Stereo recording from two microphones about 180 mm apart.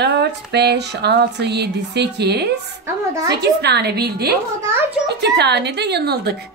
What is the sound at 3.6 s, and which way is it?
A woman's voice, 65° right (ahead or behind).